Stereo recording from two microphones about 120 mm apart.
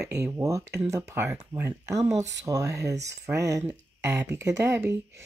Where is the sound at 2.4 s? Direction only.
25° right (ahead or behind).